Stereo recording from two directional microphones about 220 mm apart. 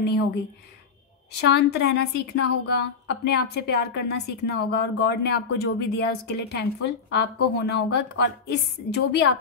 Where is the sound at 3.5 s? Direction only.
50° left (ahead or behind).